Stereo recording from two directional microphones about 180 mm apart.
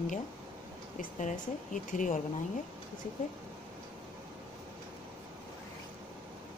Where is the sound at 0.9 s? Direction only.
45° left (ahead or behind).